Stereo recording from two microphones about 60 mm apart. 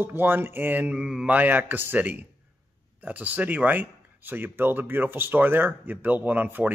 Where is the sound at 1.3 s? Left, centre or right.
Right.